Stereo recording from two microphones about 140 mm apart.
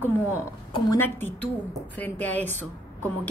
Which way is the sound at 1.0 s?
15° left (ahead or behind).